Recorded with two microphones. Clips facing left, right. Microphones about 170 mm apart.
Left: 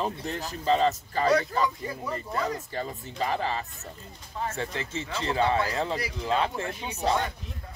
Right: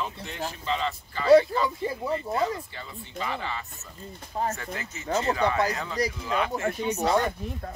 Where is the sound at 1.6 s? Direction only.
25° right (ahead or behind).